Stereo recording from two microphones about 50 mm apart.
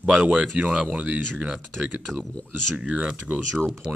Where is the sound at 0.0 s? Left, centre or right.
Right.